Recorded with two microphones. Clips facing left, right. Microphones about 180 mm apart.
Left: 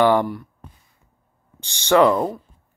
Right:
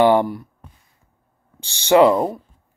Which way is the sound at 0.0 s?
15° right (ahead or behind).